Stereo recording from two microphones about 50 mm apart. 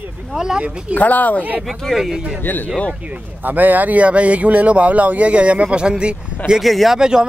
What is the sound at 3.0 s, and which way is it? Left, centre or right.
Speech, right.